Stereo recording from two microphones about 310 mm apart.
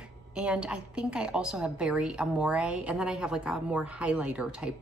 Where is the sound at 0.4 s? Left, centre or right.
Centre.